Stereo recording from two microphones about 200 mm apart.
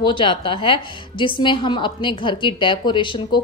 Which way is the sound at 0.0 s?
25° left (ahead or behind).